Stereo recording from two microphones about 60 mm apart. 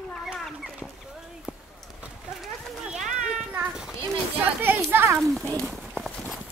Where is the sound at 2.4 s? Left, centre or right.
Centre.